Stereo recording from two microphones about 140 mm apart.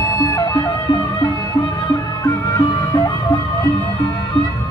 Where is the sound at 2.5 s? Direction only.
25° left (ahead or behind).